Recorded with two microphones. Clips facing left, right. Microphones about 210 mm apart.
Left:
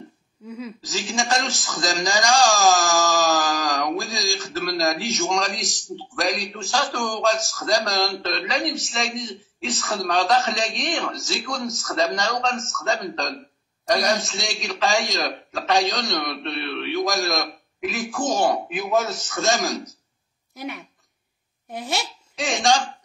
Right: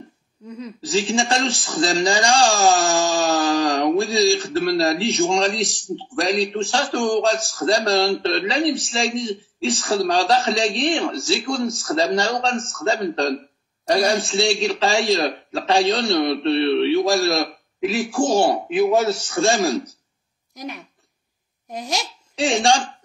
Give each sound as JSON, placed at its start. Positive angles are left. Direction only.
{"t": 0.5, "sound": "a sound", "side_deg": 5}
{"t": 0.8, "sound": "a man's voice", "side_deg": -30}
{"t": 21.7, "sound": "speech", "side_deg": 5}
{"t": 22.4, "sound": "a man's voice", "side_deg": -30}